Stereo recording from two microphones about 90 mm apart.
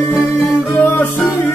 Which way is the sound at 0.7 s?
20° left (ahead or behind).